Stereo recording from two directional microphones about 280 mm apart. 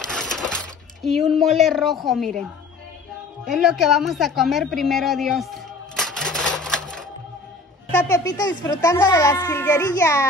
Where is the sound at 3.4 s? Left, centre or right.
Centre.